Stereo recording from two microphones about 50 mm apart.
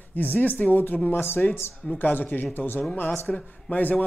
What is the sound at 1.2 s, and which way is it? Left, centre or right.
Speech, left.